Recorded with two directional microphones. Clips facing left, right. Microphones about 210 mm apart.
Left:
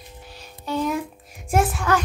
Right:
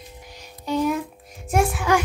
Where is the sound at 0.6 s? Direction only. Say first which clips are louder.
Right 2 dB; 15° right (ahead or behind).